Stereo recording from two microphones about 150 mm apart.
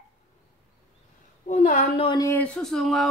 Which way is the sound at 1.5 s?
60° left (ahead or behind).